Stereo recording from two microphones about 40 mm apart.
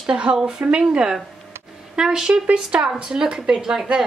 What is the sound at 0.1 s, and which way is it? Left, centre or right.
A woman's voice, right.